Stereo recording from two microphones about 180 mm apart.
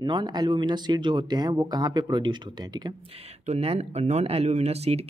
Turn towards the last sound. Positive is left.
turn(degrees=-35)  # may be behind; listen again after turning